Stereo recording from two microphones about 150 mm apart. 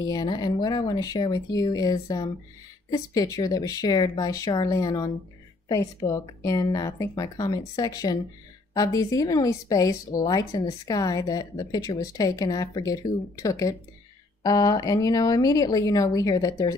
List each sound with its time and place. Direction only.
0.0 s speech: 25° left (ahead or behind)